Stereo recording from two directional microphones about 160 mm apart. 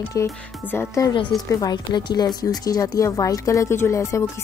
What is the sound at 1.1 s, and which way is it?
Speech, 30° left (ahead or behind).